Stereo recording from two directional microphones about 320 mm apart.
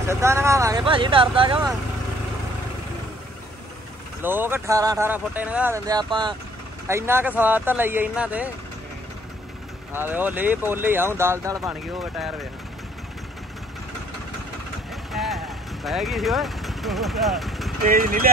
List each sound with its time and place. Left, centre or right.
0.0 s speech: centre
4.2 s speech: centre
9.9 s speech: centre
15.1 s vehicle: centre
17.8 s speech: right